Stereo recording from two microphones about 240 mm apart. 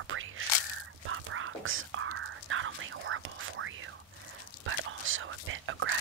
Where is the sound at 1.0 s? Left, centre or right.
Right.